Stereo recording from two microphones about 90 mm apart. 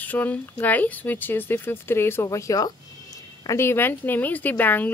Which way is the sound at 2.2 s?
40° left (ahead or behind).